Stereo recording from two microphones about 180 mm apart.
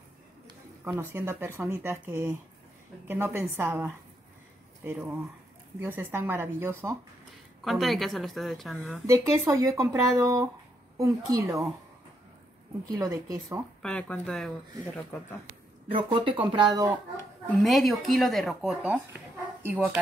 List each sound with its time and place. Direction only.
0.8 s speech: 10° right (ahead or behind)
7.6 s speech: centre (ahead or behind)
9.0 s speech: 15° right (ahead or behind)
12.8 s speech: 20° right (ahead or behind)
13.8 s speech: 5° left (ahead or behind)
15.9 s speech: 25° right (ahead or behind)
17.6 s speech: centre (ahead or behind)